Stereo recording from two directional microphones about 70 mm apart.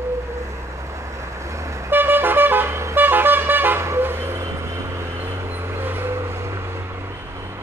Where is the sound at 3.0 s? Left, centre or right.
Right.